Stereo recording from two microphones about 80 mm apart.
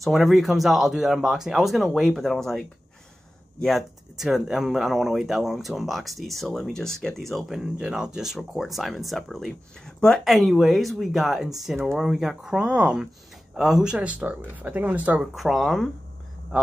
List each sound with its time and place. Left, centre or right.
0.0 s speech: centre
3.6 s speech: centre
15.1 s speech: centre